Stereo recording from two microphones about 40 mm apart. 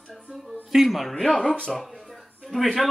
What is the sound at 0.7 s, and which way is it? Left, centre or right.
Speech, centre.